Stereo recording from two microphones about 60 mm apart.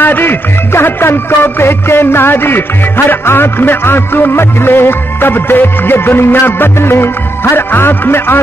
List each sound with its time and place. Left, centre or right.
0.0 s music: left